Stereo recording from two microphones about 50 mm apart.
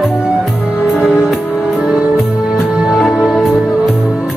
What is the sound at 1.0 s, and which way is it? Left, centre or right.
Music, centre.